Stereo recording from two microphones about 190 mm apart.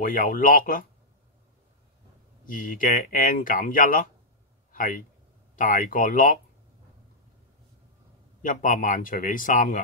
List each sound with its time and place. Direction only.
0.0 s speech: 50° left (ahead or behind)
2.4 s speech: 45° left (ahead or behind)
5.6 s speech: 45° left (ahead or behind)
8.4 s speech: 45° left (ahead or behind)